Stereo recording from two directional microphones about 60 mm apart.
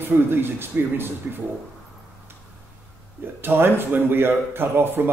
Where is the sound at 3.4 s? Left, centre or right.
Right.